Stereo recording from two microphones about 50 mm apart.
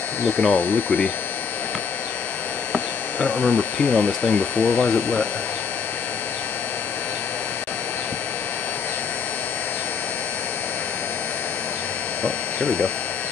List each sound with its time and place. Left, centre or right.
0.4 s speech: left
2.7 s speech: left
12.2 s speech: left